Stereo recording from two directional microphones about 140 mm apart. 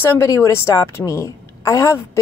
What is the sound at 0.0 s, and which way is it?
A woman's voice, 20° left (ahead or behind).